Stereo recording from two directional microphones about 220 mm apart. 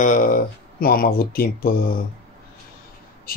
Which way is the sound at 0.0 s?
35° left (ahead or behind).